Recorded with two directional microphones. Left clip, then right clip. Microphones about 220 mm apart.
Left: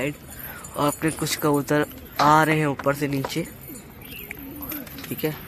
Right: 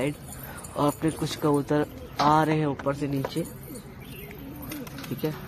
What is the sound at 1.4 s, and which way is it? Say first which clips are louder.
Speech: left 3 dB; 15° left (ahead or behind).